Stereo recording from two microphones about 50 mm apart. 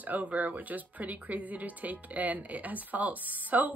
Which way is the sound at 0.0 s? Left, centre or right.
Right.